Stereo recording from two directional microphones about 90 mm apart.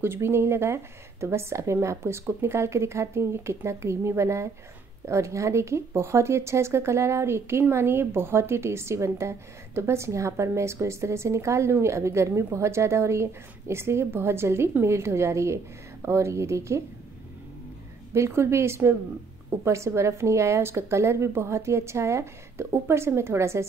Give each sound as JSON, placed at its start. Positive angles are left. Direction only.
{"t": 0.0, "sound": "speech", "side_deg": -25}
{"t": 18.1, "sound": "speech", "side_deg": -30}